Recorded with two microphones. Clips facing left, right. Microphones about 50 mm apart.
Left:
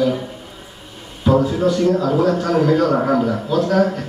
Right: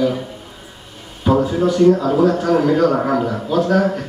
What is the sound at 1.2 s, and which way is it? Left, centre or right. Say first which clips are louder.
A man's voice: even; centre.